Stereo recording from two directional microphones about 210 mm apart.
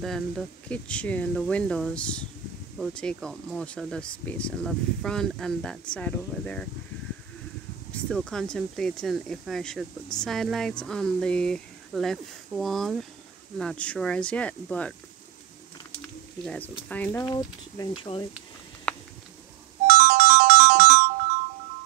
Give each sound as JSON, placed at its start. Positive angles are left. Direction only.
{"t": 0.0, "sound": "speech", "side_deg": 0}
{"t": 7.9, "sound": "speech", "side_deg": 5}
{"t": 16.4, "sound": "speech", "side_deg": 5}
{"t": 19.9, "sound": "ringtone", "side_deg": -35}